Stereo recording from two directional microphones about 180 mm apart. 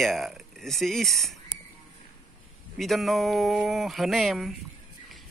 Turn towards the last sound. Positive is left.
turn(degrees=0)  # may be behind; listen again after turning